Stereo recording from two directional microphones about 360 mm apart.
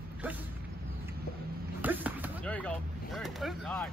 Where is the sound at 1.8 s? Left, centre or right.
Centre.